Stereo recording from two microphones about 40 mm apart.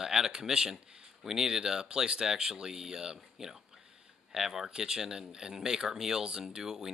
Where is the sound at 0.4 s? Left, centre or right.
Centre.